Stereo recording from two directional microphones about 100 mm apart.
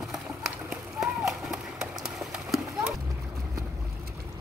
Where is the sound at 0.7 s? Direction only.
5° right (ahead or behind).